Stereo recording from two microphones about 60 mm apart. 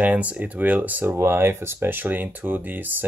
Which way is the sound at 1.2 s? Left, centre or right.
Right.